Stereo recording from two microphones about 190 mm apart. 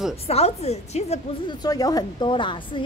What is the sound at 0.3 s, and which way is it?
Speech, 35° left (ahead or behind).